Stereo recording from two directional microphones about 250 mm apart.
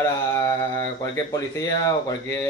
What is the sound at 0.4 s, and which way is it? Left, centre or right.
Speech, centre.